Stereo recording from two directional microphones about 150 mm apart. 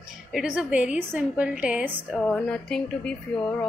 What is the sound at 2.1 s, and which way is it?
A woman's voice, 5° left (ahead or behind).